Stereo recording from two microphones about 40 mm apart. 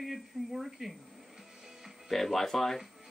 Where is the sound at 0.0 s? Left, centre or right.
Centre.